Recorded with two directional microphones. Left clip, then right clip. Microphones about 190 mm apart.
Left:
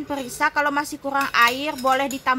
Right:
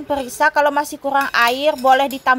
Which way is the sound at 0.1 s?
15° right (ahead or behind).